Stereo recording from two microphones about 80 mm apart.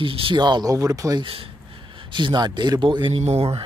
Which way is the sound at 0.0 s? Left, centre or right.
Right.